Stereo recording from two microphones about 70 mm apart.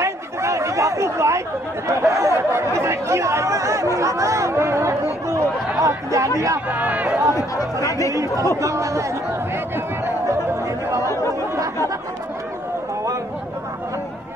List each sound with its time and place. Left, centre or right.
0.0 s chatter: right
1.9 s speech: right
6.7 s speech: right
7.3 s speech: left
8.1 s speech: right
11.5 s chatter: right